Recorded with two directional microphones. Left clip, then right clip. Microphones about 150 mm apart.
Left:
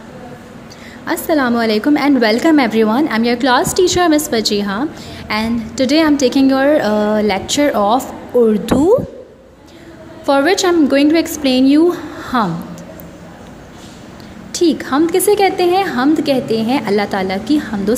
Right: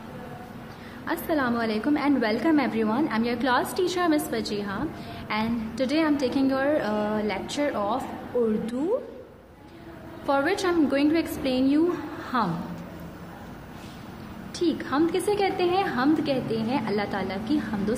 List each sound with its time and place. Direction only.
1.0 s a woman's voice: 40° left (ahead or behind)
10.2 s a woman's voice: 40° left (ahead or behind)
14.5 s a woman's voice: 45° left (ahead or behind)